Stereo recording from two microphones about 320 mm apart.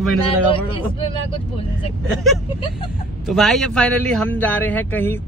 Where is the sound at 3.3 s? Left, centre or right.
Centre.